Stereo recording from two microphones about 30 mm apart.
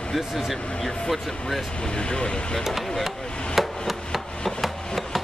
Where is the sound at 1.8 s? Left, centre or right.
Left.